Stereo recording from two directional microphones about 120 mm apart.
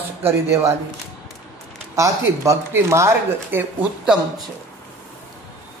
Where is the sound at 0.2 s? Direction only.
20° right (ahead or behind).